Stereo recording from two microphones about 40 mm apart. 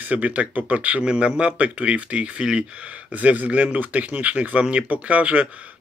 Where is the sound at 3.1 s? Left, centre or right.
Right.